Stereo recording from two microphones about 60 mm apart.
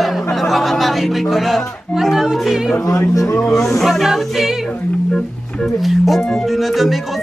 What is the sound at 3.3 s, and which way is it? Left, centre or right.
Speech, left.